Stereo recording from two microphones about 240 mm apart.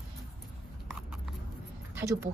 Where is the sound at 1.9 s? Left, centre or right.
Centre.